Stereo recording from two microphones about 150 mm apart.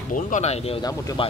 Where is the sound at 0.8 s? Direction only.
30° left (ahead or behind).